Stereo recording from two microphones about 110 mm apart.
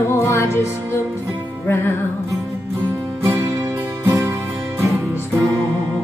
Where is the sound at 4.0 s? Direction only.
20° right (ahead or behind).